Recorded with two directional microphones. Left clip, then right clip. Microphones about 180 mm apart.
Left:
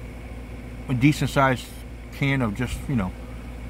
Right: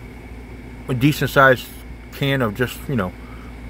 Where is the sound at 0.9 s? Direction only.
15° right (ahead or behind).